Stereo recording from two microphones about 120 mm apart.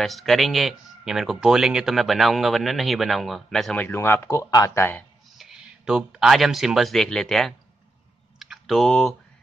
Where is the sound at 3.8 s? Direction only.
20° left (ahead or behind).